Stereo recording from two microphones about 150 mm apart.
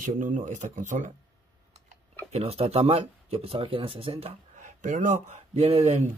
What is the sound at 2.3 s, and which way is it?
Speech, 40° right (ahead or behind).